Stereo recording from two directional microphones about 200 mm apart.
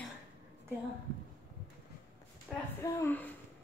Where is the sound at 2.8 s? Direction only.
10° left (ahead or behind).